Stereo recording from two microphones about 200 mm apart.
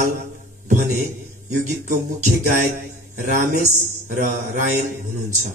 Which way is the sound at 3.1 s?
40° right (ahead or behind).